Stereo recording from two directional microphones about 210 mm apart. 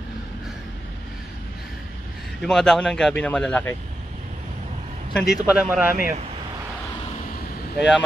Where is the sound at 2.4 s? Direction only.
Centre (ahead or behind).